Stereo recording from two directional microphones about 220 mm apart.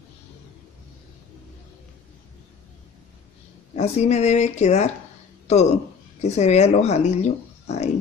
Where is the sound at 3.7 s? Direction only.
30° left (ahead or behind).